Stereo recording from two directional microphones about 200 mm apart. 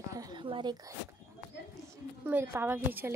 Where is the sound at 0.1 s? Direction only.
20° right (ahead or behind).